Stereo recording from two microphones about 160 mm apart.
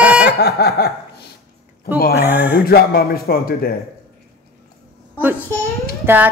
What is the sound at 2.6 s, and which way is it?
A man's voice, 70° left (ahead or behind).